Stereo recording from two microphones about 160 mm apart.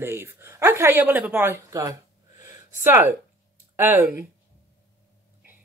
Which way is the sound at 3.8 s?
15° right (ahead or behind).